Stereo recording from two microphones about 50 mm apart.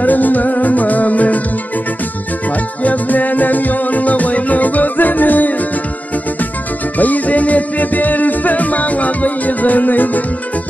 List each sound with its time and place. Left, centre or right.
0.0 s music: left
2.8 s music: left
7.0 s music: left